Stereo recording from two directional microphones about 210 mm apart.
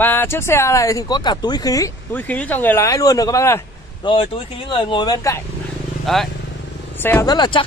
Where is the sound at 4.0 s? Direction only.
25° left (ahead or behind).